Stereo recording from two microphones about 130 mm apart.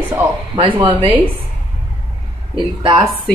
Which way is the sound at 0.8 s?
40° right (ahead or behind).